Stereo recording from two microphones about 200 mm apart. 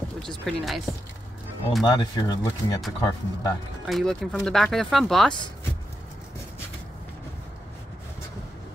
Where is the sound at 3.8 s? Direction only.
Centre (ahead or behind).